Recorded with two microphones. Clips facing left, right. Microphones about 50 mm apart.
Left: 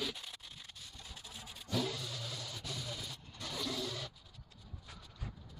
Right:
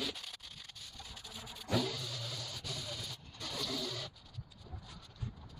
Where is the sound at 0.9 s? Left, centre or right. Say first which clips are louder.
Right 2 dB; left.